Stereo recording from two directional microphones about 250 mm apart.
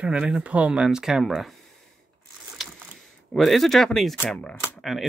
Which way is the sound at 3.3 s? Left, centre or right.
Centre.